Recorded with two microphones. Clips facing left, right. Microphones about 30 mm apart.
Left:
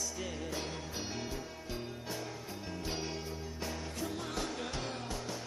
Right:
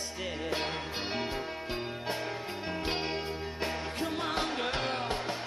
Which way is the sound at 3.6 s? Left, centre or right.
Right.